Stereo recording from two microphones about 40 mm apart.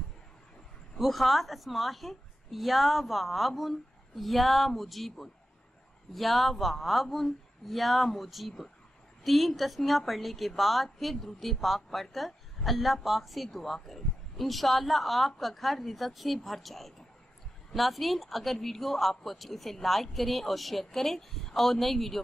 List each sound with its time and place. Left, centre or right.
0.9 s a woman's voice: centre